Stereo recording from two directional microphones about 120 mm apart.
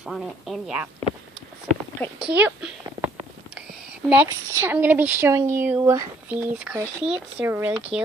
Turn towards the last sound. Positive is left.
turn(degrees=-15)  # may be behind; listen again after turning